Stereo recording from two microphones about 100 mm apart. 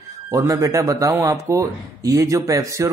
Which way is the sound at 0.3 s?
30° right (ahead or behind).